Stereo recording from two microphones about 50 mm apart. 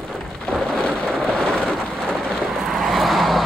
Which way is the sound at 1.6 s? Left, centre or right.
Centre.